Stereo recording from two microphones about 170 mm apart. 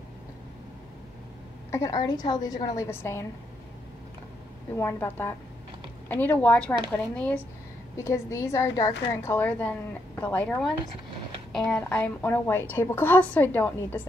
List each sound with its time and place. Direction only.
1.7 s a woman's voice: 20° left (ahead or behind)
4.7 s a woman's voice: 15° left (ahead or behind)